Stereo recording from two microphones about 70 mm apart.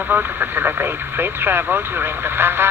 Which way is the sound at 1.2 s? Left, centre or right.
Right.